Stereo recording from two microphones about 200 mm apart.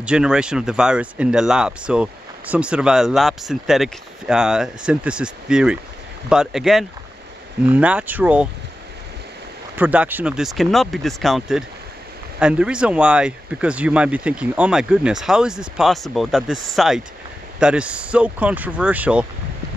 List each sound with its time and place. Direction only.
0.0 s speech: 5° right (ahead or behind)
9.8 s speech: 10° right (ahead or behind)